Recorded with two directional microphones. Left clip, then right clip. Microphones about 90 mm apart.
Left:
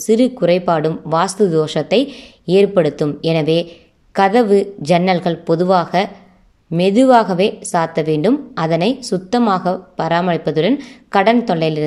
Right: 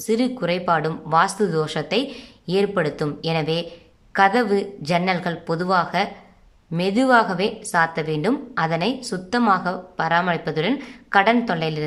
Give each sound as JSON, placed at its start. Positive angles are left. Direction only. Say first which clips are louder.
{"t": 0.0, "sound": "a woman's voice", "louder": "left 8 dB", "side_deg": 40}